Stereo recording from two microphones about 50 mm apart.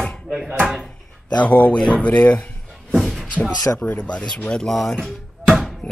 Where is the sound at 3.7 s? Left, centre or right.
Left.